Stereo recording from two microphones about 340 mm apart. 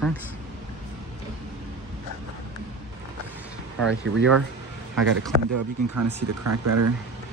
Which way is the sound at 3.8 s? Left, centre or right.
Right.